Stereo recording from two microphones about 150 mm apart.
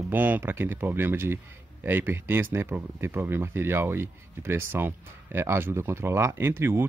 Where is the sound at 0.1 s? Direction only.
10° right (ahead or behind).